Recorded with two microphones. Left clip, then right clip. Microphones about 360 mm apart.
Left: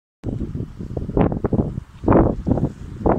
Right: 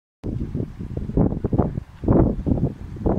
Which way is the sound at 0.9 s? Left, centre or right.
Left.